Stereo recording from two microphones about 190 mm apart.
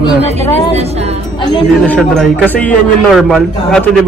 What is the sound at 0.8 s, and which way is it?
Speech, 35° right (ahead or behind).